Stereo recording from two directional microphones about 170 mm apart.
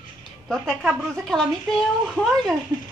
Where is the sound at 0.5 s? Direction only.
Centre (ahead or behind).